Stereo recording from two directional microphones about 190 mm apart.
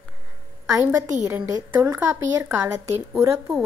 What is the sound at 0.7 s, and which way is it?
A woman's voice, 15° right (ahead or behind).